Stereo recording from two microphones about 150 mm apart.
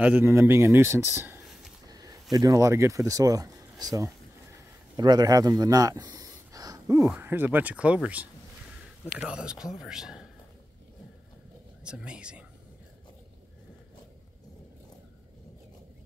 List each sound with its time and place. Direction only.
0.0 s speech: 10° right (ahead or behind)
1.9 s a sound: 25° right (ahead or behind)
2.3 s speech: 25° right (ahead or behind)
7.0 s a man's voice: 10° right (ahead or behind)
11.8 s speech: 5° right (ahead or behind)